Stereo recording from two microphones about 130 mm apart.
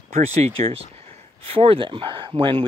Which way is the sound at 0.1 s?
55° right (ahead or behind).